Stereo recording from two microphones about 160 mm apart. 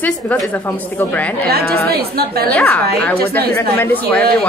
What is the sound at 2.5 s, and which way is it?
Speech, 10° left (ahead or behind).